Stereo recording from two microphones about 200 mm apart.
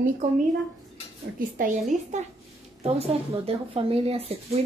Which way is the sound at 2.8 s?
30° right (ahead or behind).